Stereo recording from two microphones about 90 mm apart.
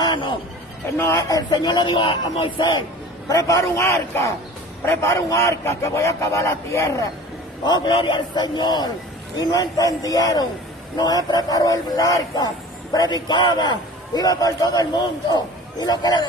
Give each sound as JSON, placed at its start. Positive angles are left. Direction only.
{"t": 0.0, "sound": "a sound", "side_deg": 60}
{"t": 0.9, "sound": "speech", "side_deg": 30}
{"t": 1.3, "sound": "a man's voice", "side_deg": 45}
{"t": 3.3, "sound": "a man's voice", "side_deg": 40}
{"t": 7.6, "sound": "a man's voice", "side_deg": 50}
{"t": 7.9, "sound": "a man's voice", "side_deg": 65}